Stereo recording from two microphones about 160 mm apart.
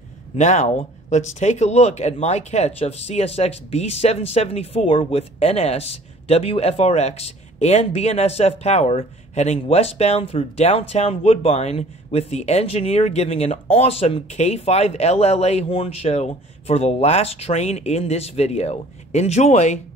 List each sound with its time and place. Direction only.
0.4 s speech: 45° left (ahead or behind)